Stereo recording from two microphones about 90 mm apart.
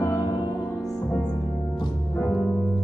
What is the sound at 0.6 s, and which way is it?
Music, 25° left (ahead or behind).